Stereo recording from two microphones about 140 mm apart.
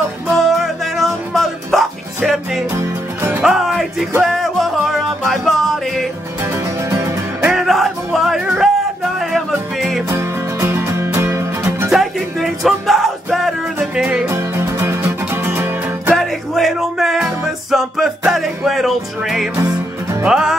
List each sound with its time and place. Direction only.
0.5 s music: centre (ahead or behind)
2.8 s music: 15° right (ahead or behind)
3.4 s music: centre (ahead or behind)
6.9 s music: 20° right (ahead or behind)
7.5 s a sound: centre (ahead or behind)
10.0 s music: 20° right (ahead or behind)
11.9 s music: centre (ahead or behind)
16.2 s music: centre (ahead or behind)
19.5 s music: 15° right (ahead or behind)
20.2 s music: 5° right (ahead or behind)